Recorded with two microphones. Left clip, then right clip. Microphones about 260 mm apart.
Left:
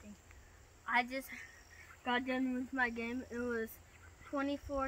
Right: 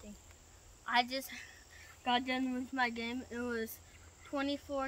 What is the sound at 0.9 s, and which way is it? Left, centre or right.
Speech, centre.